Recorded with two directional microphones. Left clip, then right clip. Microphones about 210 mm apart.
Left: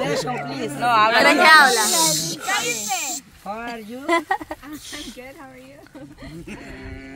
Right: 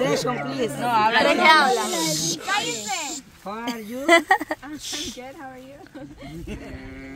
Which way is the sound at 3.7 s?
60° right (ahead or behind).